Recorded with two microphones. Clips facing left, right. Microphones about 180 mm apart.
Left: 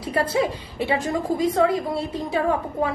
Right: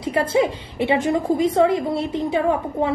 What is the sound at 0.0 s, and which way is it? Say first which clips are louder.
A woman's voice: right 3 dB; 25° right (ahead or behind).